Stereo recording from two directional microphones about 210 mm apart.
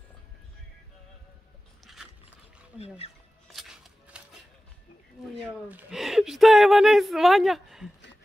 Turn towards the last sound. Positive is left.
turn(degrees=0)  # may be behind; listen again after turning